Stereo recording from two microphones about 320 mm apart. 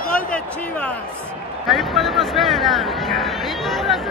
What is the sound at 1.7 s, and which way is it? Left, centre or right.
Speech, centre.